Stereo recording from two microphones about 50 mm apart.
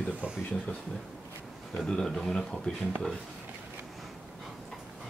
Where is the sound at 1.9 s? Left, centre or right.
Centre.